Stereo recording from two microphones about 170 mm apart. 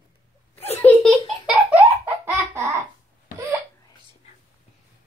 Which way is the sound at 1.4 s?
10° right (ahead or behind).